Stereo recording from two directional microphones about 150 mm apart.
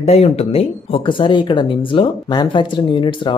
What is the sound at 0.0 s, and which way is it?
Speech, 45° left (ahead or behind).